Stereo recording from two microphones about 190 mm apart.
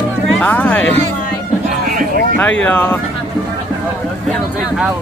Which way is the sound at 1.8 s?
45° right (ahead or behind).